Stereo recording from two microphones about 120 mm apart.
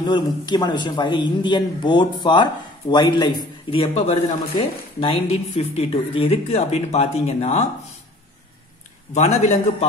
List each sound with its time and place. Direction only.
0.0 s a man's voice: 35° left (ahead or behind)
3.7 s speech: 55° left (ahead or behind)
9.1 s a man's voice: 65° left (ahead or behind)